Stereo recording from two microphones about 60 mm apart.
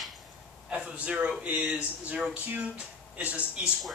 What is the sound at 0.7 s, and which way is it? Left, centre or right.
Speech, centre.